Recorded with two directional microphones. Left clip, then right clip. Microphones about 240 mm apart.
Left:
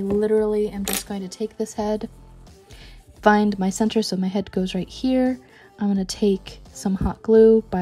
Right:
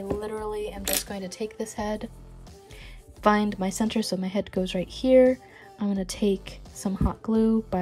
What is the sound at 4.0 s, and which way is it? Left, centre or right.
Speech, left.